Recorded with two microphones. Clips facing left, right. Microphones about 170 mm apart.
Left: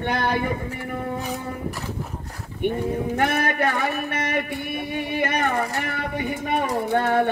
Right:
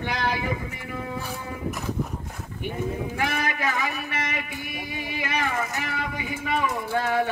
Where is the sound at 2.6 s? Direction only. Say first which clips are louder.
Left 6 dB; 60° left (ahead or behind).